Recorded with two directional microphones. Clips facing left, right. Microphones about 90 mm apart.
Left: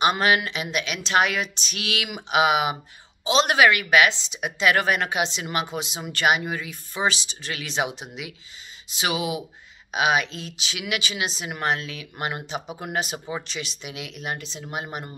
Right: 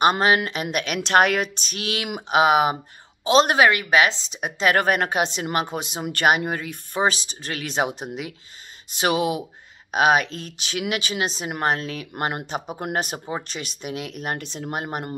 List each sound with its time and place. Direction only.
0.0 s a woman's voice: 40° right (ahead or behind)